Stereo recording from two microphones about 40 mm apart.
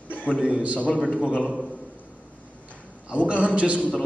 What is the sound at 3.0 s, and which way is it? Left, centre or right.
Speech, right.